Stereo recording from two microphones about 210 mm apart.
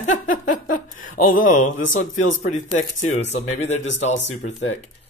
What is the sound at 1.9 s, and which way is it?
Speech, 40° left (ahead or behind).